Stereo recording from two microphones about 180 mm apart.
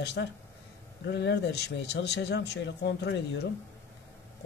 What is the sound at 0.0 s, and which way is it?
Speech, 70° left (ahead or behind).